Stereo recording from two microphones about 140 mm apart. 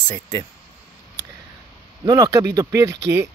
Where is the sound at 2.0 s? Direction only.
25° right (ahead or behind).